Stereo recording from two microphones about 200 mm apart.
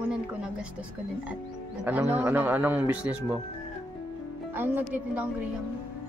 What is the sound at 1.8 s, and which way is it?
Speech, 10° right (ahead or behind).